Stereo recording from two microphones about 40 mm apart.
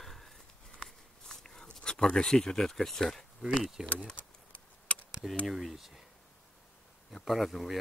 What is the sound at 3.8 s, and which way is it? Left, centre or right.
Speech, centre.